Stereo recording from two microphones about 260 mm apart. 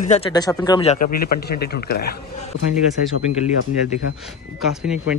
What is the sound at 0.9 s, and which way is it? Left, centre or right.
Speech, left.